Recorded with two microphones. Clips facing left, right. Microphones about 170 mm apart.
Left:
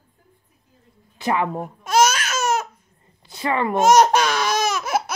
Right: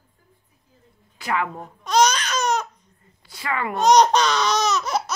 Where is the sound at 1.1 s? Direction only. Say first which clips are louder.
Left 3 dB; 25° left (ahead or behind).